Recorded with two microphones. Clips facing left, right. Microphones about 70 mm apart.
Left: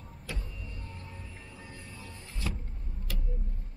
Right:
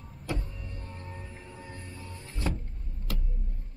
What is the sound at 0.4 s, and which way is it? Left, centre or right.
Vehicle, right.